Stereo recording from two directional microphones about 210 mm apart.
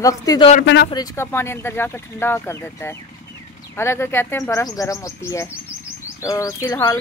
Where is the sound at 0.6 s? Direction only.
55° left (ahead or behind).